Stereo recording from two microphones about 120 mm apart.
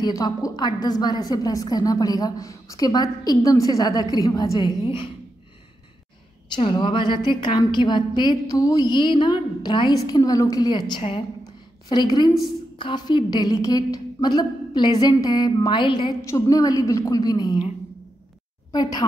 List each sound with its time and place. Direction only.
0.0 s a woman's voice: 30° left (ahead or behind)
6.5 s a woman's voice: 40° left (ahead or behind)
11.0 s a woman's voice: 50° left (ahead or behind)
11.9 s a woman's voice: 35° left (ahead or behind)
16.3 s a woman's voice: 25° left (ahead or behind)
18.7 s speech: 35° left (ahead or behind)